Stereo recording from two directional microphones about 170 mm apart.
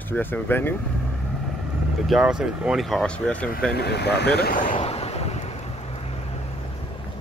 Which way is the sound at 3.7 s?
75° left (ahead or behind).